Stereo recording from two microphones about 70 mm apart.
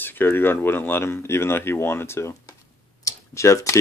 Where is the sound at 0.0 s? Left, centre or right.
Left.